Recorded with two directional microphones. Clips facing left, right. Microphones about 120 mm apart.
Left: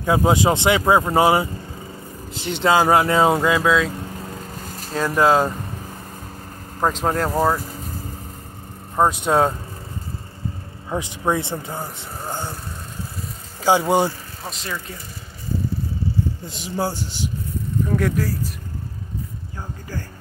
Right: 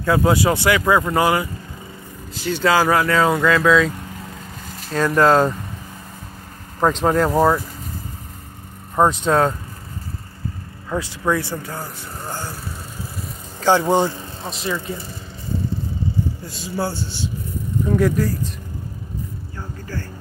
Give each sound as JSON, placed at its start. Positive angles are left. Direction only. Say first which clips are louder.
{"t": 0.0, "sound": "speech", "louder": "even", "side_deg": 20}
{"t": 3.4, "sound": "speech", "louder": "right 3 dB", "side_deg": 10}
{"t": 4.9, "sound": "speech", "louder": "right 2 dB", "side_deg": 5}
{"t": 6.8, "sound": "speech", "louder": "right 4 dB", "side_deg": 5}
{"t": 8.9, "sound": "speech", "louder": "right 1 dB", "side_deg": 10}
{"t": 10.9, "sound": "speech", "louder": "right 1 dB", "side_deg": 20}
{"t": 13.6, "sound": "speech", "louder": "right 1 dB", "side_deg": 10}
{"t": 14.5, "sound": "speech", "louder": "right 6 dB", "side_deg": 0}
{"t": 16.4, "sound": "speech", "louder": "even", "side_deg": 20}
{"t": 17.8, "sound": "speech", "louder": "right 5 dB", "side_deg": 0}